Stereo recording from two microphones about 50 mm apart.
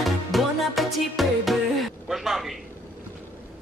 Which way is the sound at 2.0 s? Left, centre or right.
Centre.